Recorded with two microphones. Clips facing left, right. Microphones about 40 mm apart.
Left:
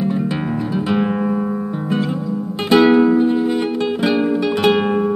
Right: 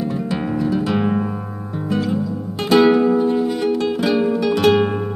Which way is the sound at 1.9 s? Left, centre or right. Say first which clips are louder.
Even; left.